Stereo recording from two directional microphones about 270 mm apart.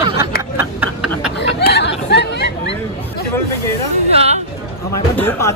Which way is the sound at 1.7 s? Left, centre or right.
Left.